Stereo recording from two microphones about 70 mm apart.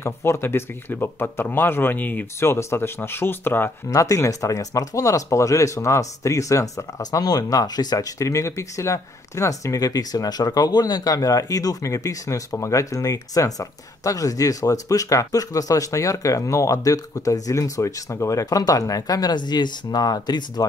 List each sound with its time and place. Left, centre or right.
0.0 s speech: left
2.4 s speech: left
3.9 s speech: left
7.0 s speech: left
8.2 s speech: left